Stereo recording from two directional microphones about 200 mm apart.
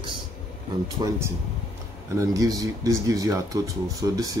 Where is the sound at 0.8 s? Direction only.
15° right (ahead or behind).